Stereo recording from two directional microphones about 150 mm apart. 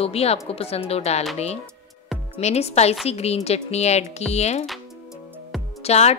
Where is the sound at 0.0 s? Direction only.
40° left (ahead or behind).